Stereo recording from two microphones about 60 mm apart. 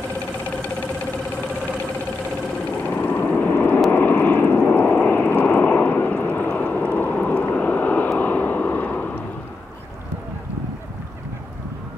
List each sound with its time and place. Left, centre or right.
2.8 s vehicle: left